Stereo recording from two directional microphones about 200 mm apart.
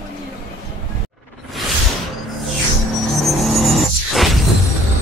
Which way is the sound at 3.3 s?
Centre (ahead or behind).